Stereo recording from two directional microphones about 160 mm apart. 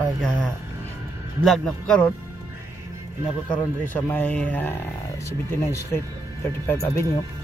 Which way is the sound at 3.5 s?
10° left (ahead or behind).